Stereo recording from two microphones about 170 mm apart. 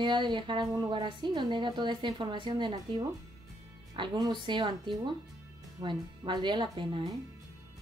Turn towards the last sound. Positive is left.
turn(degrees=-30)  # may be behind; listen again after turning